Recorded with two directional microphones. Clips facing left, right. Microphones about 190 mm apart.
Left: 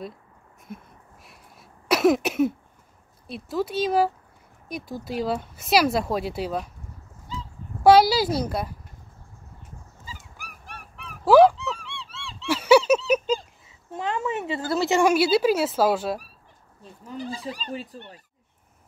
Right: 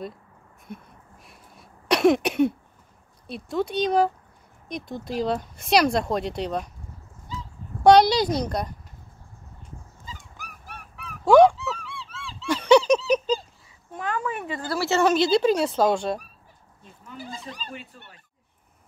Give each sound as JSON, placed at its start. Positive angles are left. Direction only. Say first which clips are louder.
{"t": 1.2, "sound": "a sound", "louder": "right 1 dB", "side_deg": 0}
{"t": 3.3, "sound": "speech", "louder": "right 1 dB", "side_deg": 0}
{"t": 7.8, "sound": "speech", "louder": "even", "side_deg": 5}
{"t": 10.0, "sound": "dog", "louder": "left 1 dB", "side_deg": 10}
{"t": 11.1, "sound": "honk", "louder": "even", "side_deg": 5}
{"t": 13.9, "sound": "speech", "louder": "left 2 dB", "side_deg": 25}
{"t": 16.8, "sound": "speech", "louder": "left 6 dB", "side_deg": 35}